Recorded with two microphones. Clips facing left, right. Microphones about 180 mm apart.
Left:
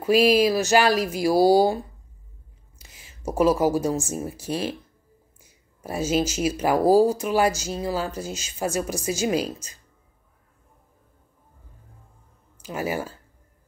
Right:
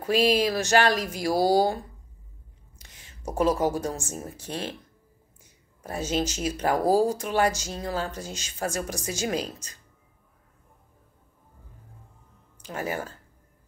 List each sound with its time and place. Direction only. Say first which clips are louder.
0.0 s speech: left 4 dB; 10° left (ahead or behind)
2.8 s speech: left 4 dB; 5° left (ahead or behind)
5.8 s speech: left 4 dB; 10° left (ahead or behind)
12.6 s speech: left 3 dB; 10° left (ahead or behind)